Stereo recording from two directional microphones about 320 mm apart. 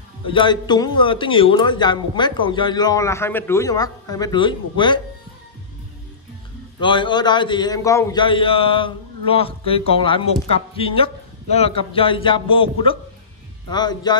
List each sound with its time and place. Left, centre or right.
0.3 s a man's voice: centre
6.8 s a man's voice: centre